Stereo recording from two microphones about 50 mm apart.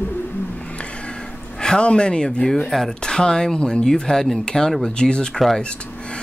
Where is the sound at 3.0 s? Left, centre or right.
Centre.